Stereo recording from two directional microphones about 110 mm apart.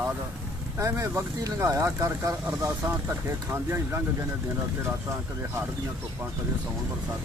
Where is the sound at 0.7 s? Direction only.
25° right (ahead or behind).